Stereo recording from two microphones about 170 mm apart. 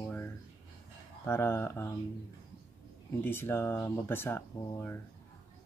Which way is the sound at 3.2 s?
15° left (ahead or behind).